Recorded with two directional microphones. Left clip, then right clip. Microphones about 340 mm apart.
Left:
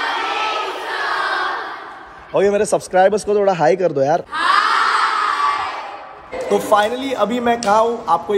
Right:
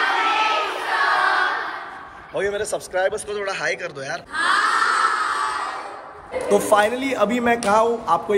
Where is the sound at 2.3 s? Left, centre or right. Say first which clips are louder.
Left 8 dB; centre.